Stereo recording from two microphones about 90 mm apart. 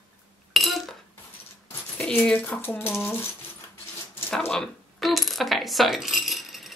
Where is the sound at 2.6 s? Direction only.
25° left (ahead or behind).